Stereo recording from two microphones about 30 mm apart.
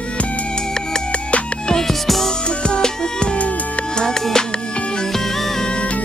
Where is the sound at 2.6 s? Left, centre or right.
Left.